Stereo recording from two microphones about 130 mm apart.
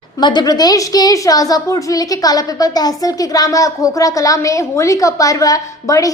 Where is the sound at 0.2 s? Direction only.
35° left (ahead or behind).